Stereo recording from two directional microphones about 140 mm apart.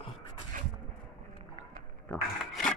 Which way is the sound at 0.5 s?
70° right (ahead or behind).